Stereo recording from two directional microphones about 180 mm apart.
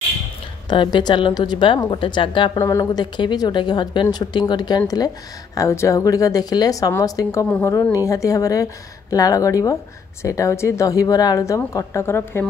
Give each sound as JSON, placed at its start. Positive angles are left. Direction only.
{"t": 0.7, "sound": "a woman's voice", "side_deg": 25}